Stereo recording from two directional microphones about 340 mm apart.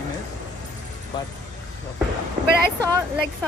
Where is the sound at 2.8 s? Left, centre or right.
Centre.